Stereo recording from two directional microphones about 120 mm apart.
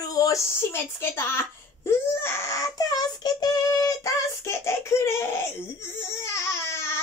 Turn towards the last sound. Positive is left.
turn(degrees=20)  # may be behind; listen again after turning